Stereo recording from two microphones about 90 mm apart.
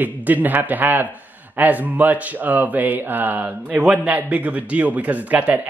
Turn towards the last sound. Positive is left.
turn(degrees=-15)  # may be behind; listen again after turning